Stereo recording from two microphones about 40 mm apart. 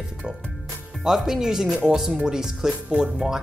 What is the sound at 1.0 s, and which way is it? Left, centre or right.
Speech, centre.